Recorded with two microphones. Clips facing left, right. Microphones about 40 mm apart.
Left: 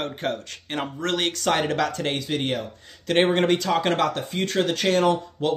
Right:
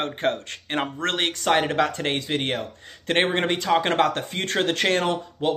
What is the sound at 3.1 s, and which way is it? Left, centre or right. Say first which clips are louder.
Speech: left 3 dB; right.